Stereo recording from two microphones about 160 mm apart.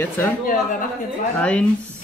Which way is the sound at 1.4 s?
5° left (ahead or behind).